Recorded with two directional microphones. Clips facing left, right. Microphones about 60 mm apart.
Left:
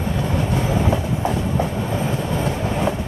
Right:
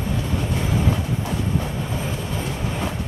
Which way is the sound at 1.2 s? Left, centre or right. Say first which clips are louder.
Left 4 dB; left.